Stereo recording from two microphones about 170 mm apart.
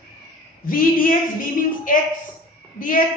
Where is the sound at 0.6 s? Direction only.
55° left (ahead or behind).